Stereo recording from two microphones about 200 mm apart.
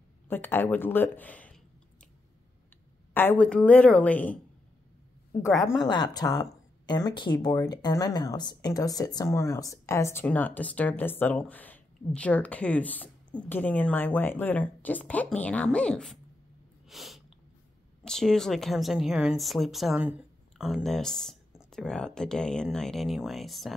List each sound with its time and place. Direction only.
0.3 s a woman's voice: 10° left (ahead or behind)
3.2 s a woman's voice: 10° left (ahead or behind)
5.9 s a woman's voice: 20° left (ahead or behind); by 16.2 s 5° left (ahead or behind)
16.9 s sneeze: centre (ahead or behind)
18.0 s speech: centre (ahead or behind)